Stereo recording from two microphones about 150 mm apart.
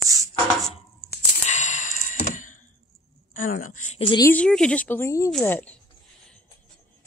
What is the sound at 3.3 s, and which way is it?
Speech, 65° left (ahead or behind).